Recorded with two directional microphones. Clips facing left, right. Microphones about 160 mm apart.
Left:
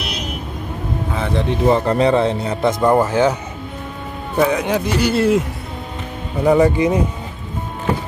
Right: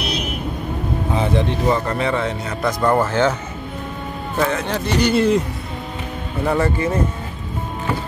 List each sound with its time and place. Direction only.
1.7 s speech: 30° left (ahead or behind); by 3.3 s 15° left (ahead or behind)
4.4 s speech: 10° left (ahead or behind)
6.4 s speech: 15° left (ahead or behind)